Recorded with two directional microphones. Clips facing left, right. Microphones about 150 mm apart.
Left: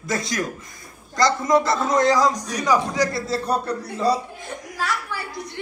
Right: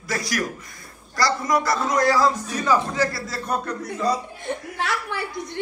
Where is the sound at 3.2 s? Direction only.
30° left (ahead or behind).